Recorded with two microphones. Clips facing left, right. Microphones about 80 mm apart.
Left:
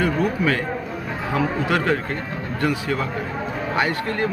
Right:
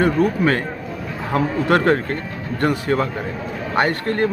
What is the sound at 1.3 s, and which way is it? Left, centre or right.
Speech, right.